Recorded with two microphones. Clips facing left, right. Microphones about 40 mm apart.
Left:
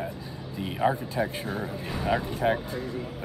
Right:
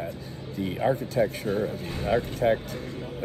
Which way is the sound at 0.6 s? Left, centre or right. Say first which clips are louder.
Left 1 dB; centre.